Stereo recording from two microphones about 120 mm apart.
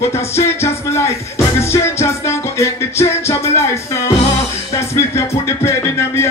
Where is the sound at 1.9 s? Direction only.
20° left (ahead or behind).